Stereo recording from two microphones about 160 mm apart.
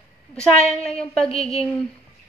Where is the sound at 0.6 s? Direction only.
40° left (ahead or behind).